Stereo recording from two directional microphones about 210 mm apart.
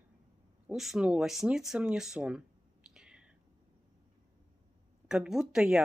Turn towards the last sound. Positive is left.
turn(degrees=-5)  # may be behind; listen again after turning